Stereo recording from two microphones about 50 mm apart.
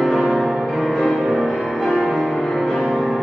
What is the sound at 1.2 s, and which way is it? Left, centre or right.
Music, centre.